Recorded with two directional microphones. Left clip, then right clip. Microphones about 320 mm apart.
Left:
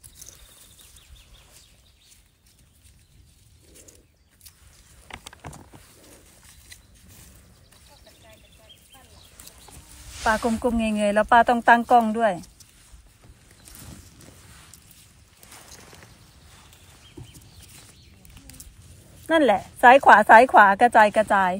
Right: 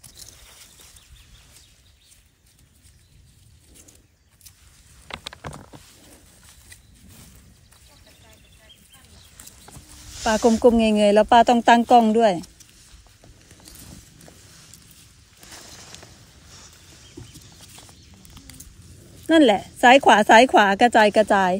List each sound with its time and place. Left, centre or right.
5.0 s vehicle: right
10.6 s a woman's voice: centre
19.2 s a woman's voice: centre